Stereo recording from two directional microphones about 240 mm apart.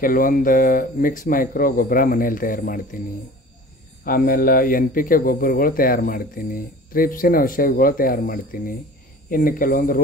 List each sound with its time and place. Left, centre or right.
0.0 s speech: left
4.0 s speech: left